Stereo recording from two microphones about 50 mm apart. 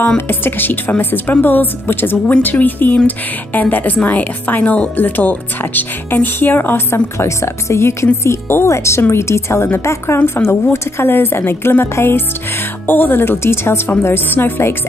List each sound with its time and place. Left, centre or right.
0.3 s a woman's voice: left
6.9 s a woman's voice: left
8.2 s a woman's voice: left
8.6 s a woman's voice: left
10.1 s a woman's voice: left
12.8 s a woman's voice: left